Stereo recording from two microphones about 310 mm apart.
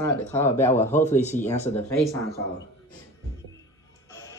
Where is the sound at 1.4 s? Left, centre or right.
Centre.